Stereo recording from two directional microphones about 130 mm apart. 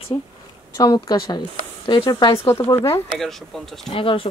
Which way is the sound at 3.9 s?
45° left (ahead or behind).